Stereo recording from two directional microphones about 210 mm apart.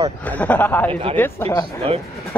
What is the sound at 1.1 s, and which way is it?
Speech, 10° left (ahead or behind).